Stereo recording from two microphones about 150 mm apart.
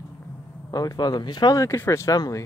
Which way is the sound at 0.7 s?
25° left (ahead or behind).